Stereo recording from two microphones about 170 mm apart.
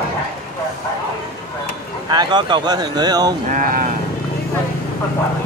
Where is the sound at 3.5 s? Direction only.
55° right (ahead or behind).